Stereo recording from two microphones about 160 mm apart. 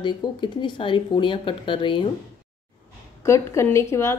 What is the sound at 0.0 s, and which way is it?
Speech, 30° left (ahead or behind).